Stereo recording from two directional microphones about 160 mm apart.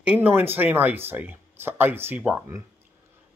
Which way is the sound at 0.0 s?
10° right (ahead or behind).